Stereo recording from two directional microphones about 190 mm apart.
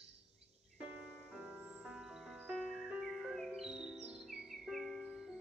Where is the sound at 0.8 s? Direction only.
10° right (ahead or behind).